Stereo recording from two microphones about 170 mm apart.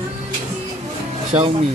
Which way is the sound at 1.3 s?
35° right (ahead or behind).